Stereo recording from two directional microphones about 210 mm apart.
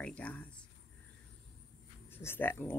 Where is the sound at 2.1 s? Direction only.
10° left (ahead or behind).